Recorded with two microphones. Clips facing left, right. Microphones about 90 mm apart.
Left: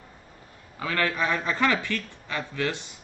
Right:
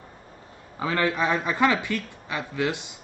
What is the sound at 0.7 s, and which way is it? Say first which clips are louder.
A man's voice: right 2 dB; 20° right (ahead or behind).